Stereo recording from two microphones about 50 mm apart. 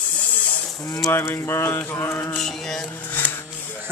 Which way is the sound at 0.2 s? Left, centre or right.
Left.